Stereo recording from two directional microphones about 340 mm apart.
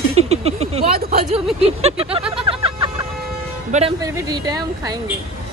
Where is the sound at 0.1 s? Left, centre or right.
Centre.